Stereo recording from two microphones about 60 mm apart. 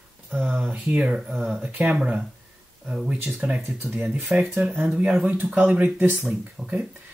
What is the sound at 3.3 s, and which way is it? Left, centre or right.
Speech, right.